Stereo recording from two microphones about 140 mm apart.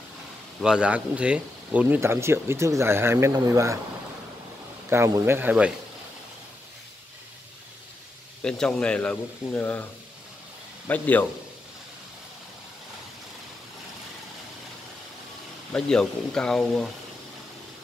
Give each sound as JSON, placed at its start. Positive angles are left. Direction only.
{"t": 0.6, "sound": "speech", "side_deg": -5}
{"t": 4.8, "sound": "speech", "side_deg": -20}
{"t": 8.4, "sound": "speech", "side_deg": 5}
{"t": 10.9, "sound": "speech", "side_deg": 10}
{"t": 15.7, "sound": "speech", "side_deg": 5}